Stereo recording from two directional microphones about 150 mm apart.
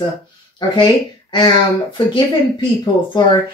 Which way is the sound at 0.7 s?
30° left (ahead or behind).